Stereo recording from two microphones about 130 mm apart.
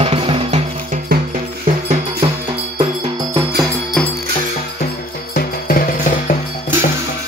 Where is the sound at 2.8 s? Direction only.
30° right (ahead or behind).